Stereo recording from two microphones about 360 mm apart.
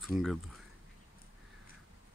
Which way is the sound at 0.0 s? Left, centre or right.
Centre.